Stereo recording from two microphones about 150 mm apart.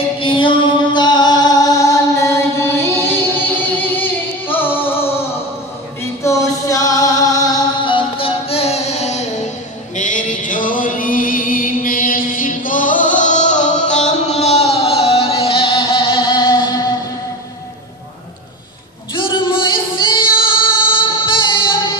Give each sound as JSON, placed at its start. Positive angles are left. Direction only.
{"t": 0.2, "sound": "music", "side_deg": 35}
{"t": 9.9, "sound": "a sound", "side_deg": 60}
{"t": 19.1, "sound": "female singing", "side_deg": 30}